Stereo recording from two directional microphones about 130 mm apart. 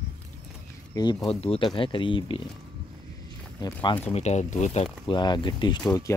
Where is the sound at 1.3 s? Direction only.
45° left (ahead or behind).